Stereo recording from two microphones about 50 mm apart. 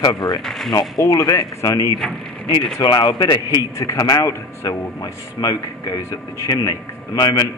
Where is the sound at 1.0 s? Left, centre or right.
Left.